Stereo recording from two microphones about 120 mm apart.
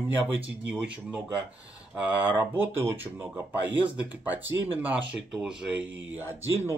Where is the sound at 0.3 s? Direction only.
10° right (ahead or behind).